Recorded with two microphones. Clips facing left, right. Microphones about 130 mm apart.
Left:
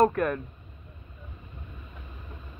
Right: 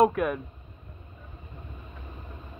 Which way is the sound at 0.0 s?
5° right (ahead or behind).